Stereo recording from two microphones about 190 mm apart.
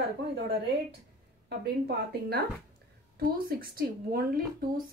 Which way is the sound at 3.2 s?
50° right (ahead or behind).